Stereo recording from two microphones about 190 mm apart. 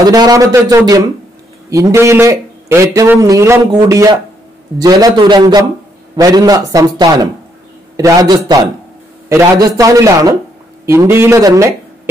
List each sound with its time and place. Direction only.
0.0 s a man's voice: 20° right (ahead or behind)